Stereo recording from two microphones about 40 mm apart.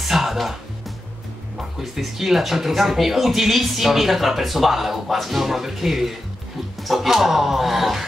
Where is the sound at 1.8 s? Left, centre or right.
Centre.